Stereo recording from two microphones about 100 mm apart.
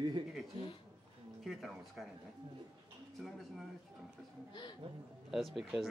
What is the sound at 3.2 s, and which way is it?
Speech, centre (ahead or behind).